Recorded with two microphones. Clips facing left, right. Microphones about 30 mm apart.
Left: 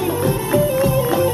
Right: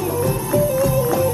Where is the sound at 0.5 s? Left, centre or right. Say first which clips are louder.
Left 1 dB; left.